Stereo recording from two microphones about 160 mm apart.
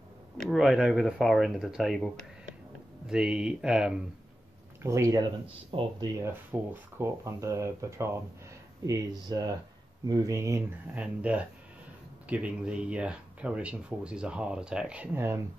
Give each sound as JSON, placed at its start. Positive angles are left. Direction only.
{"t": 0.4, "sound": "speech", "side_deg": 0}
{"t": 4.8, "sound": "speech", "side_deg": -20}
{"t": 5.7, "sound": "speech", "side_deg": -35}
{"t": 6.1, "sound": "speech", "side_deg": -15}
{"t": 11.0, "sound": "speech", "side_deg": -10}